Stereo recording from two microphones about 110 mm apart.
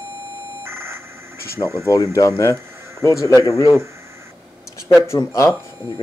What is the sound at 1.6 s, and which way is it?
Speech, 25° right (ahead or behind).